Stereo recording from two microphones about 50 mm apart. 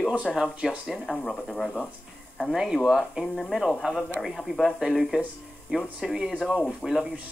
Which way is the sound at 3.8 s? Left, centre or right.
Centre.